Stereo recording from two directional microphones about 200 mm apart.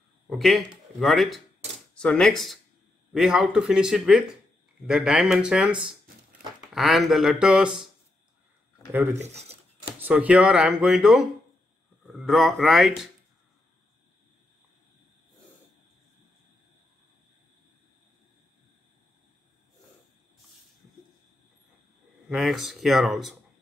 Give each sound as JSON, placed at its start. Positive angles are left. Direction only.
{"t": 0.3, "sound": "speech", "side_deg": 0}
{"t": 9.1, "sound": "a sound", "side_deg": -35}
{"t": 9.9, "sound": "speech", "side_deg": -10}
{"t": 22.3, "sound": "speech", "side_deg": 0}